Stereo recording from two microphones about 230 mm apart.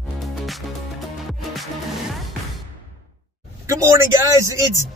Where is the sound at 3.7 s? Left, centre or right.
Centre.